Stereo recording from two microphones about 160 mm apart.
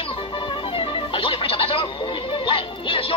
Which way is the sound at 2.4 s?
35° left (ahead or behind).